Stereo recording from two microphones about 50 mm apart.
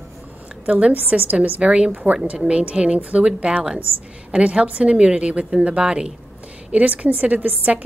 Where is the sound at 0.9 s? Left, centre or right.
Right; by 6.1 s centre.